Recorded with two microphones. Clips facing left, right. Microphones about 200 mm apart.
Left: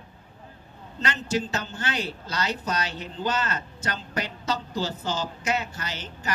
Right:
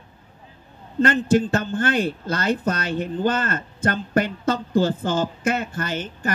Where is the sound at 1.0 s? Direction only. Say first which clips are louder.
Right 10 dB; 55° right (ahead or behind).